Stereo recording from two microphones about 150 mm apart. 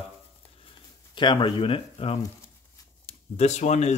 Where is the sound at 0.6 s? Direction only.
30° left (ahead or behind).